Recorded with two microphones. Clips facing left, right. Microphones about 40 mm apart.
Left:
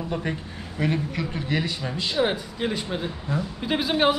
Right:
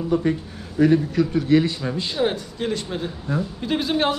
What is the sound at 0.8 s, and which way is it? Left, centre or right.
Speech, left.